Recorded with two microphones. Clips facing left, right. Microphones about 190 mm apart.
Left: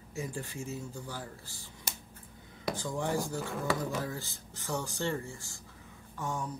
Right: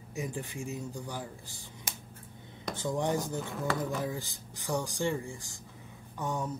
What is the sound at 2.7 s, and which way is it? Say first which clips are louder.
Speech: right 2 dB; 20° right (ahead or behind).